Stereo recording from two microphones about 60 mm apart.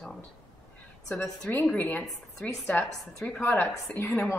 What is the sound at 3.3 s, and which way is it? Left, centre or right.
A woman's voice, left.